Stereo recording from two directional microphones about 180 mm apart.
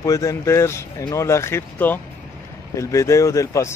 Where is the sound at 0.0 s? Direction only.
20° left (ahead or behind).